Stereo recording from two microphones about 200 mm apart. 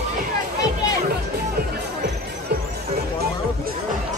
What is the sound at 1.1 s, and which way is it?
Music, 50° right (ahead or behind).